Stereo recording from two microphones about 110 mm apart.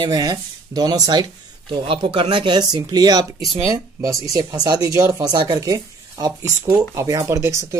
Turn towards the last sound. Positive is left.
turn(degrees=-25)  # may be behind; listen again after turning